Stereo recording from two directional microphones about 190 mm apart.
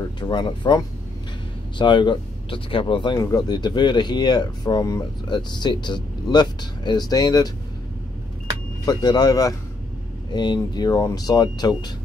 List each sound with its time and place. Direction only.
0.2 s speech: 25° left (ahead or behind)
8.8 s speech: 20° left (ahead or behind)